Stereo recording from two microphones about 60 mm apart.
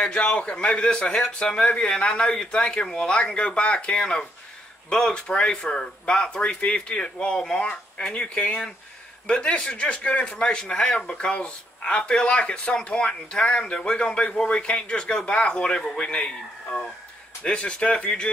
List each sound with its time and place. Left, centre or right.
0.0 s speech: centre
9.3 s speech: centre